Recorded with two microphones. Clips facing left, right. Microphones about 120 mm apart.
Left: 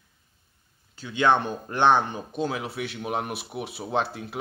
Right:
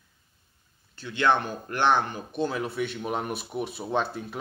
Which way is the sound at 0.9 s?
15° left (ahead or behind).